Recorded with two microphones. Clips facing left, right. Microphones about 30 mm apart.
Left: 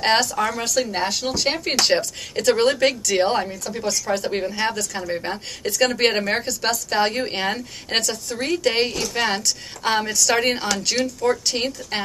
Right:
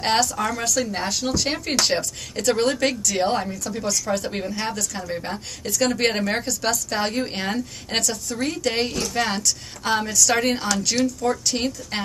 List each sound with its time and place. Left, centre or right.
0.0 s a woman's voice: centre